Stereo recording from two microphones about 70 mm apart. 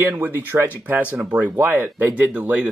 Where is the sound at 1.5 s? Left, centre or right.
Right.